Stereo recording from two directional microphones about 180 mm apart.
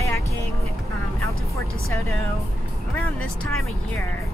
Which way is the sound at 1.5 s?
15° left (ahead or behind).